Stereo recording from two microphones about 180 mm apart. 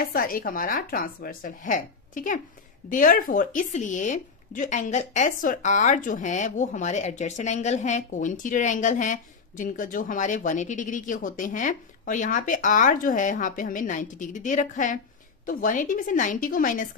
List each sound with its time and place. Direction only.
0.0 s speech: 55° left (ahead or behind)